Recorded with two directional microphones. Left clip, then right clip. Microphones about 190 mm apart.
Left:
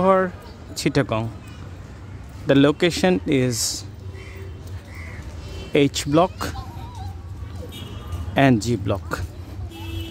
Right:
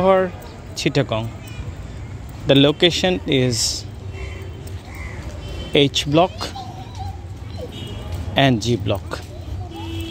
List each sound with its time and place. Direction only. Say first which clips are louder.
0.0 s speech: right 2 dB; 20° left (ahead or behind)
2.4 s speech: right 3 dB; 25° left (ahead or behind)
5.7 s speech: right 3 dB; 25° left (ahead or behind)
8.4 s speech: right 1 dB; 25° left (ahead or behind)